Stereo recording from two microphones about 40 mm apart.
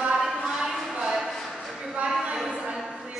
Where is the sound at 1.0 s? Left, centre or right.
Centre.